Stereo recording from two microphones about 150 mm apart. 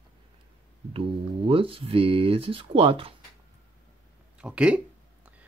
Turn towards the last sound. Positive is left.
turn(degrees=-10)  # may be behind; listen again after turning